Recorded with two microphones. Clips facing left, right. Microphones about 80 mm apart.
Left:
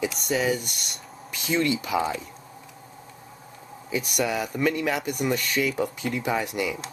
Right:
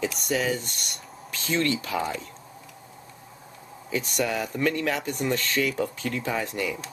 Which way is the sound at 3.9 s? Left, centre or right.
Centre.